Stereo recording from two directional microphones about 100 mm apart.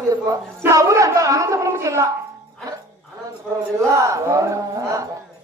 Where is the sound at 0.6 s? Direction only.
30° right (ahead or behind).